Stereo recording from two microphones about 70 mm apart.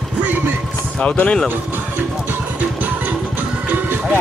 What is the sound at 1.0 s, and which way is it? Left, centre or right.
Speech, centre.